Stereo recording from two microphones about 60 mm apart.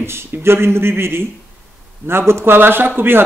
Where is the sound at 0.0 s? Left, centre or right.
Right.